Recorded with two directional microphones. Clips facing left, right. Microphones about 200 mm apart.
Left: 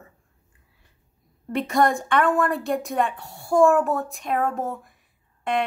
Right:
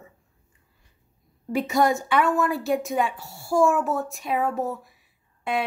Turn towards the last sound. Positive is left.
turn(degrees=-5)  # may be behind; listen again after turning